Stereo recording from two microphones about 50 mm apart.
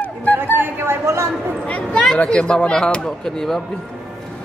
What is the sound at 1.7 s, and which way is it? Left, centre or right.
Speech, left.